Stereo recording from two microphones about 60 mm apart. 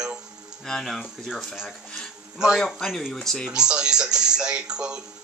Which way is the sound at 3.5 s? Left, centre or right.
Centre.